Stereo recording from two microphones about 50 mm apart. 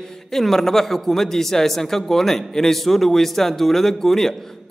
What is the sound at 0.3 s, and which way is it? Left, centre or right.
A man's voice, centre.